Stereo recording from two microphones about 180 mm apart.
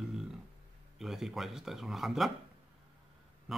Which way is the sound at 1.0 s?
Centre (ahead or behind).